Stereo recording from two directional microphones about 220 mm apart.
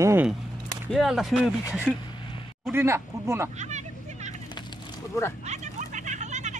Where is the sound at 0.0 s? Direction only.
10° right (ahead or behind).